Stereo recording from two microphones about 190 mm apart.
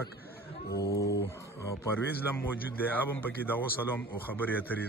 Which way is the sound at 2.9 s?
10° left (ahead or behind).